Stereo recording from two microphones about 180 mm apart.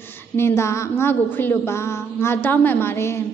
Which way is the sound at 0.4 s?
15° left (ahead or behind).